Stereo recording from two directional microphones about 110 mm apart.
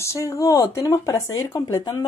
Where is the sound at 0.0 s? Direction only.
25° left (ahead or behind).